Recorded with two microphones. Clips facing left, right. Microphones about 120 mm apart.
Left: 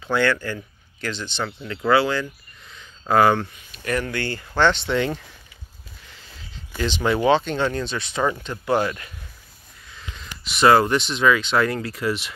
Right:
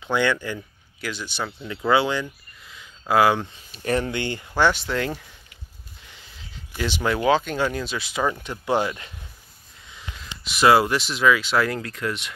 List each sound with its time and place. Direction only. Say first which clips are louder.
0.0 s speech: left 1 dB; 15° right (ahead or behind)
2.7 s a sound: left 1 dB; 5° right (ahead or behind)
3.5 s speech: right 2 dB; 30° right (ahead or behind)
4.2 s speech: left 1 dB; 20° right (ahead or behind); by 5.2 s 5° right (ahead or behind)
7.0 s speech: left 2 dB; centre (ahead or behind)
8.4 s speech: left 1 dB; 15° right (ahead or behind)
10.4 s speech: left 1 dB; centre (ahead or behind)